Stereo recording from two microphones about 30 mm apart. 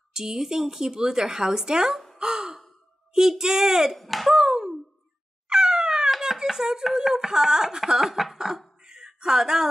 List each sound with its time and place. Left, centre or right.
0.1 s a woman's voice: centre
2.2 s sigh: centre
3.1 s a child's voice: centre
3.9 s speech: centre
4.3 s a sound: centre
5.5 s cat: right
6.0 s a sound: centre
7.2 s a woman's voice: right; by 8.4 s centre
8.8 s a sound: centre